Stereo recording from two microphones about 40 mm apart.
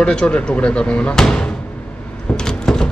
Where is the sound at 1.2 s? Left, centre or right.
Centre.